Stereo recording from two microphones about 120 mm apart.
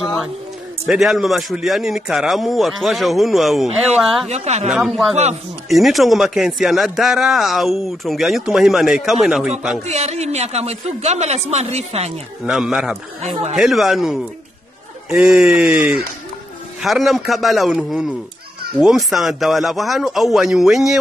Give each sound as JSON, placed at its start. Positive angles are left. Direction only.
{"t": 0.0, "sound": "a sound", "side_deg": 0}
{"t": 0.8, "sound": "a man's voice", "side_deg": 0}
{"t": 4.3, "sound": "speech", "side_deg": -65}
{"t": 4.6, "sound": "a man's voice", "side_deg": -5}
{"t": 9.8, "sound": "a woman's voice", "side_deg": -65}
{"t": 12.4, "sound": "a man's voice", "side_deg": -5}
{"t": 13.2, "sound": "speech", "side_deg": -65}
{"t": 13.6, "sound": "a man's voice", "side_deg": 0}